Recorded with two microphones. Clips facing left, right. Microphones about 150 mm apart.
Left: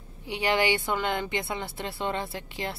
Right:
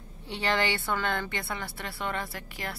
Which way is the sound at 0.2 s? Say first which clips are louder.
Left 3 dB; 15° left (ahead or behind).